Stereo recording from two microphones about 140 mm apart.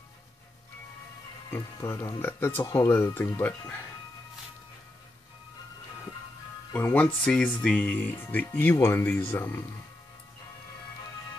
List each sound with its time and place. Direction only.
1.5 s speech: 15° left (ahead or behind)
6.7 s speech: 15° left (ahead or behind)